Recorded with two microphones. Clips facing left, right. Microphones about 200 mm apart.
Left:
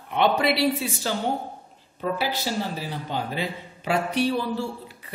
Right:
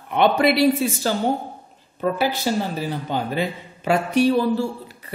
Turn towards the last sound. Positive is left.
turn(degrees=-45)  # may be behind; listen again after turning